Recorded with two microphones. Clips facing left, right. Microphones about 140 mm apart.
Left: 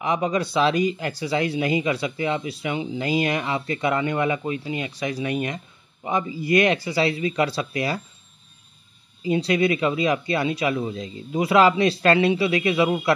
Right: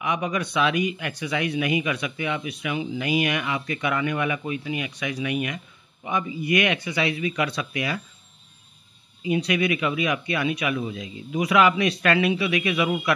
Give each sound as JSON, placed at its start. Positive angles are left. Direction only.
{"t": 0.0, "sound": "speech", "side_deg": 30}
{"t": 9.2, "sound": "speech", "side_deg": 30}